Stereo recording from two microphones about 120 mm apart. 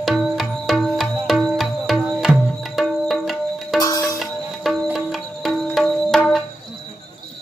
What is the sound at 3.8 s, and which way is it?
Music, 30° left (ahead or behind).